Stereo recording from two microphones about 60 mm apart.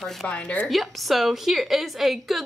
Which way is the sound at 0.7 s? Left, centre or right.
Centre.